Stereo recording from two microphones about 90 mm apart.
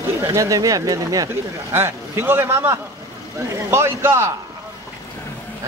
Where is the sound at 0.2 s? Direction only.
35° right (ahead or behind).